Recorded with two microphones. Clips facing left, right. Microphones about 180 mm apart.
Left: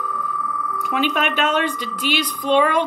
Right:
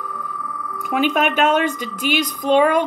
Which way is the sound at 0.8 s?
50° right (ahead or behind).